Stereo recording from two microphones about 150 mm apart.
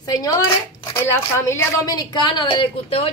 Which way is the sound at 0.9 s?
15° left (ahead or behind).